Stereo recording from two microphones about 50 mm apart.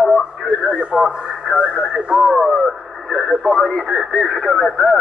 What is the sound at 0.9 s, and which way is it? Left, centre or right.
Speech, centre.